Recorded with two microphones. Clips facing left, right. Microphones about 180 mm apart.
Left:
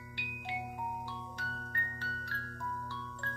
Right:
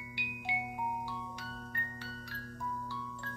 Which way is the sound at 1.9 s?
10° right (ahead or behind).